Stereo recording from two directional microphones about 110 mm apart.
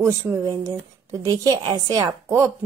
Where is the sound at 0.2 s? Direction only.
30° right (ahead or behind).